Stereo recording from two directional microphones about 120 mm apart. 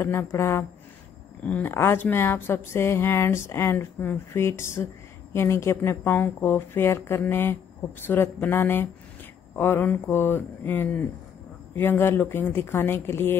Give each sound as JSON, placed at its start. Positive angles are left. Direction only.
{"t": 0.0, "sound": "speech", "side_deg": 20}